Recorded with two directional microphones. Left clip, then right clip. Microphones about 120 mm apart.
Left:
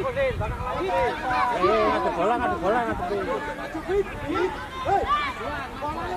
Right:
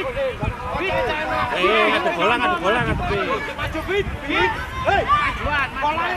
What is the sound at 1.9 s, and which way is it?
Speech, 30° right (ahead or behind).